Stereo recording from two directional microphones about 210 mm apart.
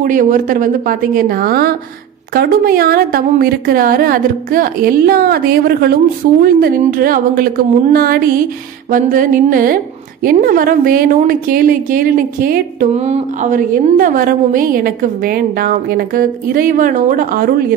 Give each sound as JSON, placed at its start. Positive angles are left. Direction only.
{"t": 0.0, "sound": "a woman's voice", "side_deg": -40}
{"t": 12.9, "sound": "a woman's voice", "side_deg": -30}